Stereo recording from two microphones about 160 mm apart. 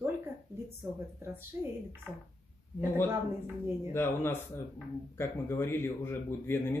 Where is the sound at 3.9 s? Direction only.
15° left (ahead or behind).